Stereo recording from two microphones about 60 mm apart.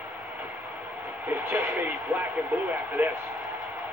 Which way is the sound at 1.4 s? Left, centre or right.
Right.